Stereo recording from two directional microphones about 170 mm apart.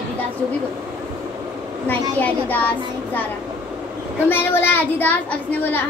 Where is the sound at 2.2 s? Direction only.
10° left (ahead or behind).